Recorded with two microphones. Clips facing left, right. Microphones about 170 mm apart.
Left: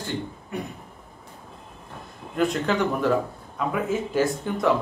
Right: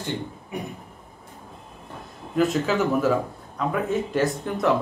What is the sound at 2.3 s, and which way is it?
A man's voice, centre (ahead or behind).